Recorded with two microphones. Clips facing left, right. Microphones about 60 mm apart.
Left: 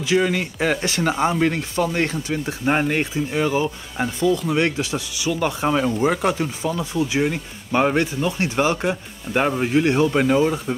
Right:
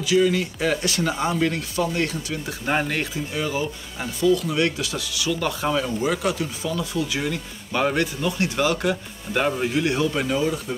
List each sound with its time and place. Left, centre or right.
0.0 s speech: left
2.6 s speech: centre
3.4 s speech: left